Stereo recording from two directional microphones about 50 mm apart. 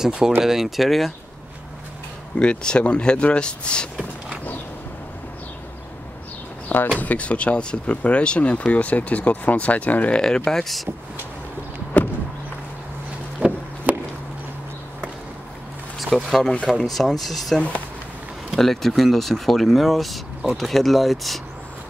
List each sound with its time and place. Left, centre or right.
0.0 s speech: centre
2.3 s speech: centre
7.0 s speech: left
10.1 s speech: centre
10.6 s speech: centre
11.9 s a sound: left
13.4 s wood: right
13.9 s a sound: right
16.0 s speech: centre
18.6 s speech: centre